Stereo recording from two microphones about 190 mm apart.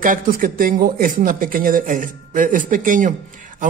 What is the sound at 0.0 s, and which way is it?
Speech, 45° right (ahead or behind).